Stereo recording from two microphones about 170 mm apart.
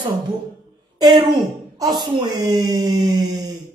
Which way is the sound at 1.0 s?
25° right (ahead or behind).